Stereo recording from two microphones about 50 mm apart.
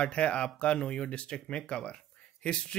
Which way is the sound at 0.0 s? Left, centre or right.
Left.